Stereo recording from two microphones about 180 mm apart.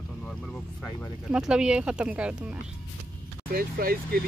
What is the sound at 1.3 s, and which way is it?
Speech, 5° right (ahead or behind).